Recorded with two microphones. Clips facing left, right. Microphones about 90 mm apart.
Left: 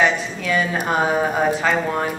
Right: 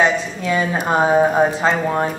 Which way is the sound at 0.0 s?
25° right (ahead or behind).